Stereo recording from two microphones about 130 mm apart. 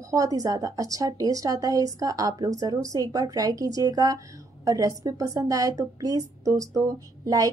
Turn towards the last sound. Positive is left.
turn(degrees=-25)  # may be behind; listen again after turning